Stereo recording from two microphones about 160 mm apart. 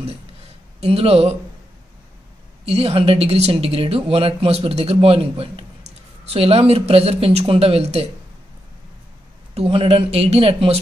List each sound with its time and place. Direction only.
0.7 s speech: 40° right (ahead or behind)
2.6 s speech: 40° right (ahead or behind)
9.5 s speech: 35° right (ahead or behind)